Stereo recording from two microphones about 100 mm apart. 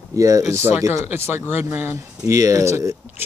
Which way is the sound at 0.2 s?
35° right (ahead or behind).